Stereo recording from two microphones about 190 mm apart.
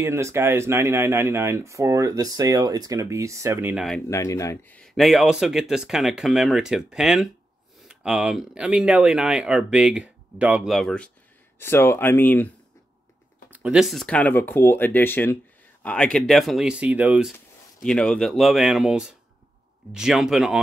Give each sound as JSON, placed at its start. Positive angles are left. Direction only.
{"t": 0.0, "sound": "speech", "side_deg": -15}
{"t": 3.7, "sound": "speech", "side_deg": 0}
{"t": 4.1, "sound": "speech", "side_deg": 15}
{"t": 13.5, "sound": "speech", "side_deg": -5}
{"t": 17.8, "sound": "speech", "side_deg": 5}